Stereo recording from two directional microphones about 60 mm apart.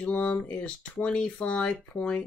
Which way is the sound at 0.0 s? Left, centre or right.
Left.